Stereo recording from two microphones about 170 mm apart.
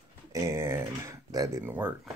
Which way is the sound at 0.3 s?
15° right (ahead or behind).